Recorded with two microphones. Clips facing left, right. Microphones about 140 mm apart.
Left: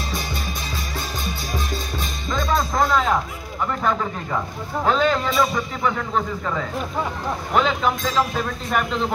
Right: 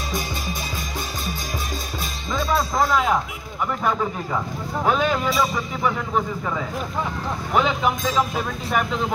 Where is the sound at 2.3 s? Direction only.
5° right (ahead or behind).